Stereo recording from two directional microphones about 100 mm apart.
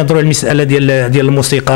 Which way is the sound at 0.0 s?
20° left (ahead or behind).